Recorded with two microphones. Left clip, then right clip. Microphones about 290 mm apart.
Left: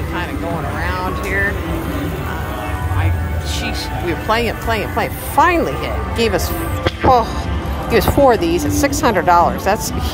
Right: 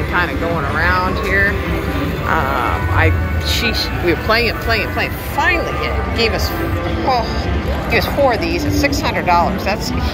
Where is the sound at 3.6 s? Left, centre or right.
Centre.